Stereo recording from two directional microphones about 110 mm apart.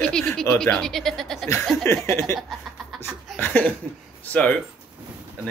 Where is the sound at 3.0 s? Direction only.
20° left (ahead or behind).